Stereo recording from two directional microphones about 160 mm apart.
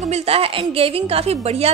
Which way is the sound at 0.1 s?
35° right (ahead or behind).